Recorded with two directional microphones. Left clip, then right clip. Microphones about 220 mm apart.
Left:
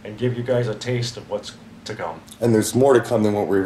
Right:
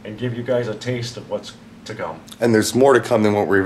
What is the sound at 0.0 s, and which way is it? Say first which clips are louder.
Speech: left 2 dB; centre (ahead or behind).